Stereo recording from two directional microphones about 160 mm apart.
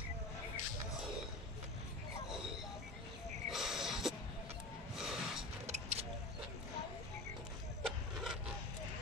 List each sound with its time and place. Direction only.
3.4 s snort: centre (ahead or behind)
5.7 s vehicle: 45° right (ahead or behind)
7.8 s a sound: centre (ahead or behind)